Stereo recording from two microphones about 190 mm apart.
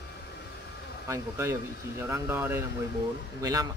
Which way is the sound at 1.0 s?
15° right (ahead or behind).